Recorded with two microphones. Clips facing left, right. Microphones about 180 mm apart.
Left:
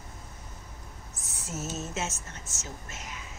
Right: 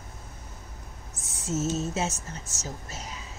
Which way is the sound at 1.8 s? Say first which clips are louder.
Right 5 dB; 35° right (ahead or behind).